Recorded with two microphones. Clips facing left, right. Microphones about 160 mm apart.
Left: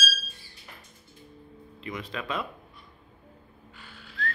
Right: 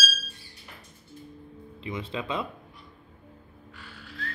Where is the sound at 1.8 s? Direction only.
25° right (ahead or behind).